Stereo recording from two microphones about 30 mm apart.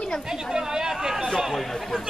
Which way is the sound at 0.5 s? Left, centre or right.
Centre.